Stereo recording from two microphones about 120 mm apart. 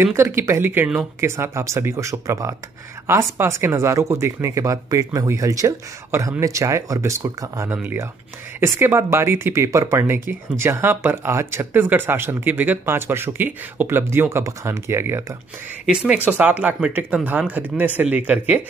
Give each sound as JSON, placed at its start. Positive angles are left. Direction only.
{"t": 0.0, "sound": "speech", "side_deg": -20}
{"t": 15.8, "sound": "speech", "side_deg": -10}